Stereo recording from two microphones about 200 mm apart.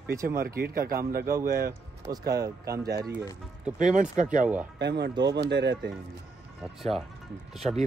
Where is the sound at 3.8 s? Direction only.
40° right (ahead or behind).